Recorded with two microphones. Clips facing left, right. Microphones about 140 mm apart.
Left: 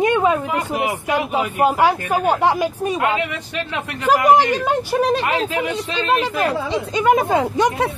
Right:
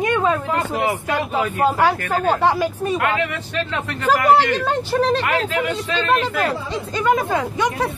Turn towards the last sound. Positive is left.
turn(degrees=25)  # may be behind; listen again after turning